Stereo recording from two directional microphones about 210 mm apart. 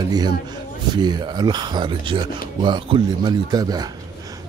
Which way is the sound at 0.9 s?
20° right (ahead or behind).